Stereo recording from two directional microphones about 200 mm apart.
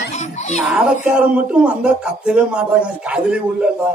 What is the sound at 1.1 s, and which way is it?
A man's voice, 5° right (ahead or behind).